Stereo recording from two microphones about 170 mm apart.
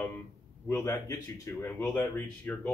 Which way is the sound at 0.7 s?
15° left (ahead or behind).